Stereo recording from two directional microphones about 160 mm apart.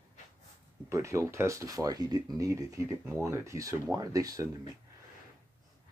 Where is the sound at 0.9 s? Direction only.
20° right (ahead or behind).